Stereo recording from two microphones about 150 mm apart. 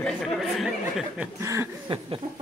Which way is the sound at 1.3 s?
20° right (ahead or behind).